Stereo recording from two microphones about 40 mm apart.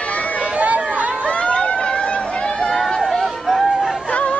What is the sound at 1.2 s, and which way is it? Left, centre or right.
Run, left.